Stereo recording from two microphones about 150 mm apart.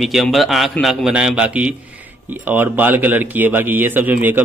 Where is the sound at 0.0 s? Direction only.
Centre (ahead or behind).